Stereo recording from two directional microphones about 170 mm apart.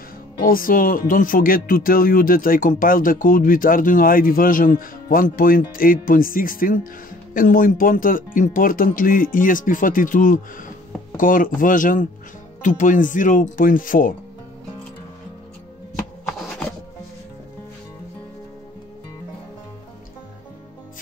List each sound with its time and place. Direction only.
0.5 s speech: 55° left (ahead or behind)